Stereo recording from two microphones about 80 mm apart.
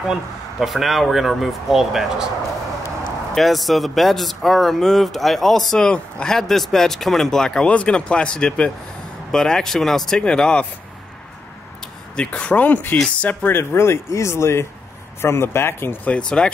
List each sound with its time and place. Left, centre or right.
0.1 s speech: centre
3.3 s speech: centre
12.2 s speech: centre
16.2 s speech: centre